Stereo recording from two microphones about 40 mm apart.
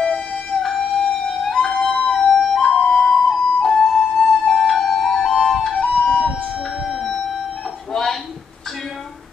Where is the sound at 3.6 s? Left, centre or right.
Centre.